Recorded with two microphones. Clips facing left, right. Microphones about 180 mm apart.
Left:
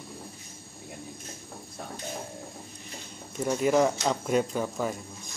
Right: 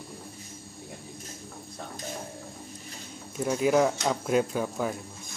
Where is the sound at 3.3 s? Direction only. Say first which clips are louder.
Even; centre (ahead or behind).